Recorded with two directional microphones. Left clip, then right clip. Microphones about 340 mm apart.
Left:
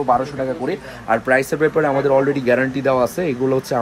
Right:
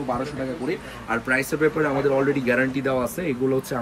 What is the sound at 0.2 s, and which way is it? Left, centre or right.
A man's voice, left.